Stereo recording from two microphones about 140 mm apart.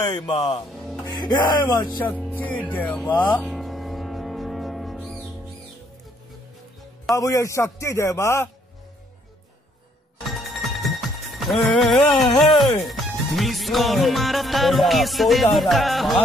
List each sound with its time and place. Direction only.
0.3 s speech: 45° left (ahead or behind)
1.1 s speech: 30° left (ahead or behind)
2.2 s speech: 10° left (ahead or behind)
3.4 s music: centre (ahead or behind)
5.0 s music: 10° right (ahead or behind)
7.2 s a man's voice: 25° left (ahead or behind)
10.3 s music: centre (ahead or behind)
12.4 s speech: centre (ahead or behind)